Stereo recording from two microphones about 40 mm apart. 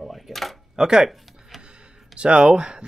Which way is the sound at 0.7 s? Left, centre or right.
Centre.